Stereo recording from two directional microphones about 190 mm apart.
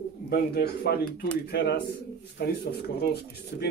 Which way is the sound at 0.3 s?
55° left (ahead or behind).